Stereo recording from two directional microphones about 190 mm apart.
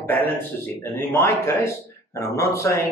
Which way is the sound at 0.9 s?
15° left (ahead or behind).